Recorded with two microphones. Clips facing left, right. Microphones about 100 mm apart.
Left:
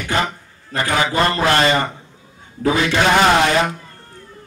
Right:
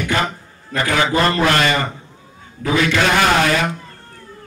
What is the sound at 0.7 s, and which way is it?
A man's voice, 30° left (ahead or behind).